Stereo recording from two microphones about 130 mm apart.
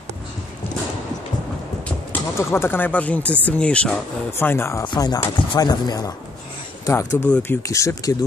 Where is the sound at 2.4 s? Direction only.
20° left (ahead or behind).